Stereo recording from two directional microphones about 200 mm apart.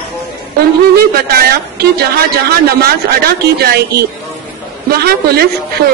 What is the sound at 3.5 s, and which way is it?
A woman's voice, 55° right (ahead or behind).